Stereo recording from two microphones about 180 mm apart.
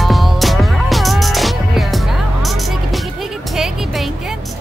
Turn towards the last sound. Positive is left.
turn(degrees=0)  # may be behind; listen again after turning